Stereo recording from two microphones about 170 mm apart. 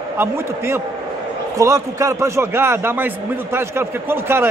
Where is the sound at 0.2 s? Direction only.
15° right (ahead or behind).